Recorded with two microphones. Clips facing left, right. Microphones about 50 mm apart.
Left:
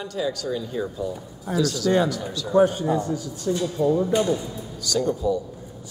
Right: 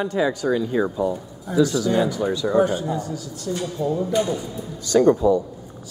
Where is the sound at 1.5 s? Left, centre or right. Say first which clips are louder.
Right 2 dB; right.